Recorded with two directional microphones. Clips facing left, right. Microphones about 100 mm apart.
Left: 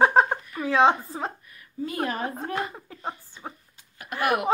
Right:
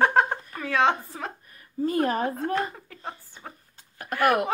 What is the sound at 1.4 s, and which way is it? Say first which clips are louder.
Speech: right 5 dB; 40° right (ahead or behind).